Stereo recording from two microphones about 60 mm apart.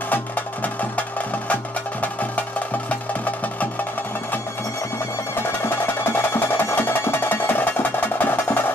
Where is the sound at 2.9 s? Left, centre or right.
Left.